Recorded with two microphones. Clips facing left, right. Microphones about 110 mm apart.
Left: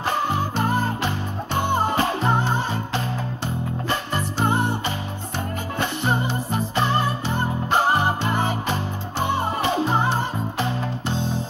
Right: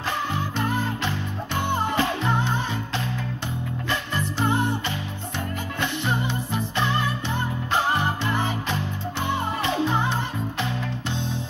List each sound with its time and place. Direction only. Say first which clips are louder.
0.0 s music: left 4 dB; 35° left (ahead or behind)